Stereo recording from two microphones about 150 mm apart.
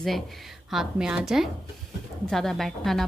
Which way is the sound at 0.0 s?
Centre (ahead or behind).